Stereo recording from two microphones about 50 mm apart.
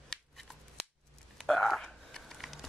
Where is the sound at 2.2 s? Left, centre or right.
Centre.